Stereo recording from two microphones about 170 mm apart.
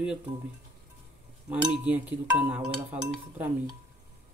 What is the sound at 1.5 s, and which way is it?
Speech, 10° right (ahead or behind).